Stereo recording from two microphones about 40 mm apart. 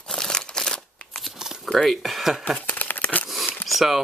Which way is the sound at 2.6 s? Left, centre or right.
Left.